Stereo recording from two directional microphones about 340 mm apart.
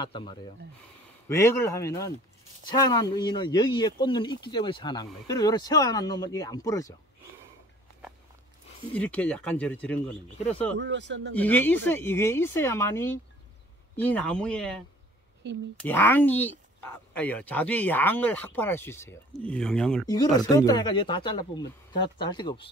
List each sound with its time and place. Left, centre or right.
0.0 s speech: centre
8.9 s speech: centre
10.8 s speech: right
11.3 s speech: centre
15.4 s speech: right
15.8 s speech: centre